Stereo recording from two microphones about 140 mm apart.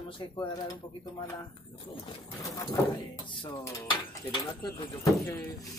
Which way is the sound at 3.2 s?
35° left (ahead or behind).